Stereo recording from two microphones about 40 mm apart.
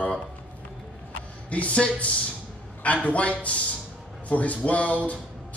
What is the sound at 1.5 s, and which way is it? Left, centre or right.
Speech, left.